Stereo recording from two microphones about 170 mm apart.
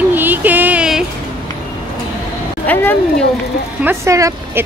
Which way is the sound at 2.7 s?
10° left (ahead or behind).